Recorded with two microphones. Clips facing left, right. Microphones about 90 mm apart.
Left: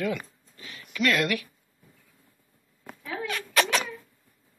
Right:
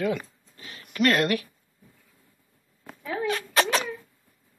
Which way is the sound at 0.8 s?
45° right (ahead or behind).